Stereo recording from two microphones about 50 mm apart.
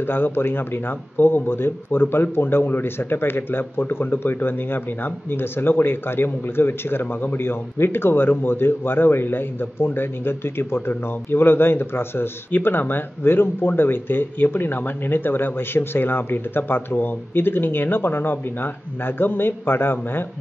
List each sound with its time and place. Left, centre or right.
0.0 s speech: left